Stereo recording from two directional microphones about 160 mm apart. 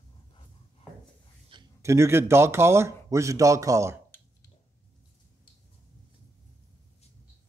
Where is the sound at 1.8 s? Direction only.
15° right (ahead or behind).